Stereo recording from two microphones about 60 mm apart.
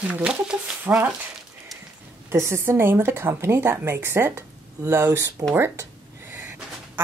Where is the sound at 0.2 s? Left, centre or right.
Centre.